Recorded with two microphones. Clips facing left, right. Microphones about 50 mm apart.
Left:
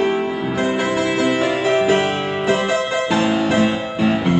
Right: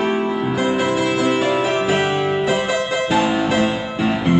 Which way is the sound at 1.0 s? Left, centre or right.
Left.